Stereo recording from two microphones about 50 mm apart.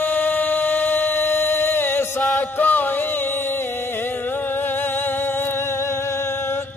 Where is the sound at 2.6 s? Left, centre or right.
Left.